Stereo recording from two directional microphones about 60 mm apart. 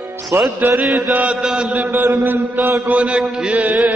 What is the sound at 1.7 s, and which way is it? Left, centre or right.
Mantra, right.